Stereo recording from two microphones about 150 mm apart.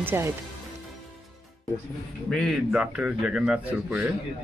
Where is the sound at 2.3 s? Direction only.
5° left (ahead or behind).